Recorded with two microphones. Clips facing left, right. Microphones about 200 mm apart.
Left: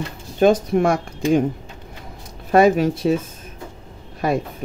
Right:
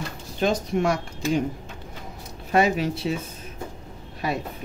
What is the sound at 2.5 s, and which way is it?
Speech, 50° left (ahead or behind).